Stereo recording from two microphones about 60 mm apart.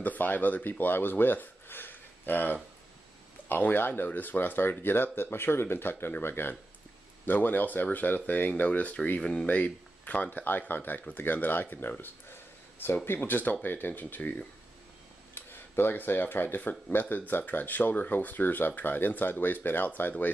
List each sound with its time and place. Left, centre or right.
0.0 s speech: left
9.2 s speech: centre
9.5 s speech: left
15.3 s speech: left